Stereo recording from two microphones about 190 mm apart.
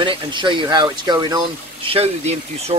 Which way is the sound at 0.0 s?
25° right (ahead or behind).